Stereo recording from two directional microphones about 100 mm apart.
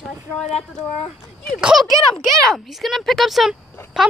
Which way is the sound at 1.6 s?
5° right (ahead or behind).